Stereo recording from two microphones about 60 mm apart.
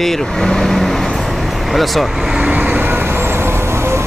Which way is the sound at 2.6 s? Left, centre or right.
Right.